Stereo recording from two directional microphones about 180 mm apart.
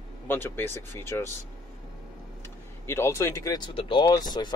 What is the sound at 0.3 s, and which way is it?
Speech, 10° left (ahead or behind).